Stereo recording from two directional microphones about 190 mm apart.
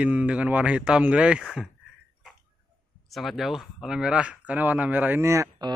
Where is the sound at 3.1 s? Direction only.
Centre (ahead or behind); by 5.7 s 15° right (ahead or behind).